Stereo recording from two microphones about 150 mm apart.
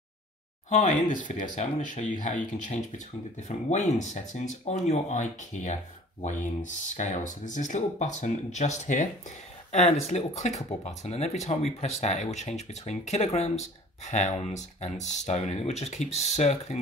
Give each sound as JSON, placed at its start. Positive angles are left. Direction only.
{"t": 0.7, "sound": "speech", "side_deg": 55}